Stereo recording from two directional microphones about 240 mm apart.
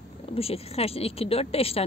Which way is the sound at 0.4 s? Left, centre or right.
Left.